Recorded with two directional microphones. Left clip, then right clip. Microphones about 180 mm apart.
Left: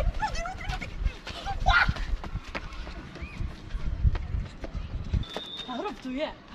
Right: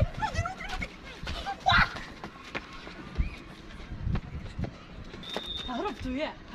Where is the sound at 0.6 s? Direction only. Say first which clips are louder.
Even; 10° right (ahead or behind).